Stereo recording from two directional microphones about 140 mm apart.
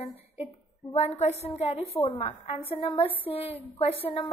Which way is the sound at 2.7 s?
35° left (ahead or behind).